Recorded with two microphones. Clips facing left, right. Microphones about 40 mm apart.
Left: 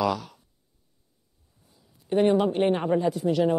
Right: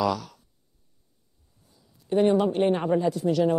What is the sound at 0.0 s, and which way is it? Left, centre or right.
Speech, centre.